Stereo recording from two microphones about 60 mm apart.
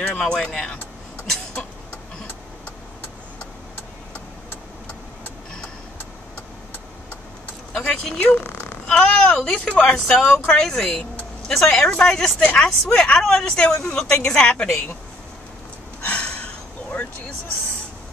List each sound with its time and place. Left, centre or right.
0.0 s a woman's voice: left
7.7 s a woman's voice: centre
8.2 s speech: left
8.8 s a woman's voice: centre
10.0 s a woman's voice: centre
16.0 s a sound: centre